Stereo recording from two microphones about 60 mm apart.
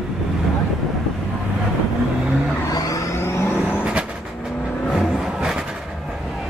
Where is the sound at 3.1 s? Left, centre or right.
Left.